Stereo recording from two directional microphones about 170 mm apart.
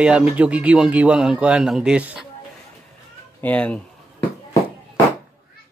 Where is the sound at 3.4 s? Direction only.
5° left (ahead or behind).